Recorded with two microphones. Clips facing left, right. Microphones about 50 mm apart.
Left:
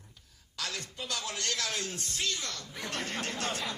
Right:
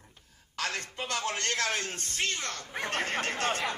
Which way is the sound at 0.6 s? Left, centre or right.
Right.